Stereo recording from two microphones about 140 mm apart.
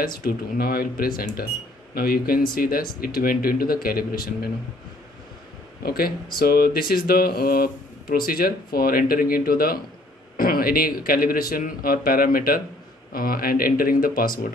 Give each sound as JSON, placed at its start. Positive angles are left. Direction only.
{"t": 0.0, "sound": "speech", "side_deg": 90}
{"t": 5.8, "sound": "speech", "side_deg": 90}